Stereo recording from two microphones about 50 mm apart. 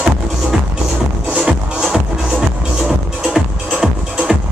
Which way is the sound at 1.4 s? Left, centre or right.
Centre.